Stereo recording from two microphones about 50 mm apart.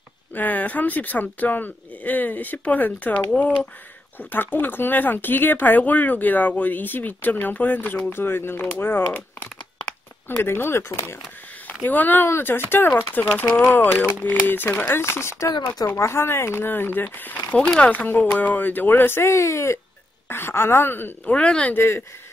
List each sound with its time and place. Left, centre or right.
0.3 s speech: left
8.1 s speech: left
11.8 s speech: left
12.3 s speech: left
12.9 s speech: left
19.2 s speech: left
20.2 s speech: left
21.3 s speech: left
21.7 s speech: left